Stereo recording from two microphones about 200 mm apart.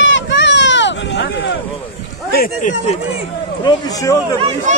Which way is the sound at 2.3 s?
50° left (ahead or behind).